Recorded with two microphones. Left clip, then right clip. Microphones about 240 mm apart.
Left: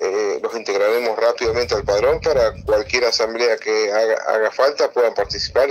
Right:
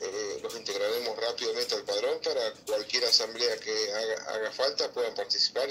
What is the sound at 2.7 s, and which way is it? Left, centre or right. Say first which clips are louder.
Speech: left 7 dB; left.